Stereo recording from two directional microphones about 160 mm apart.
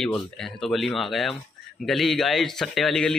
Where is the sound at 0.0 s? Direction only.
Centre (ahead or behind).